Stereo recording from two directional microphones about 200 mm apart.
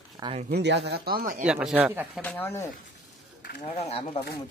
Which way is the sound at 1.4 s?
5° right (ahead or behind).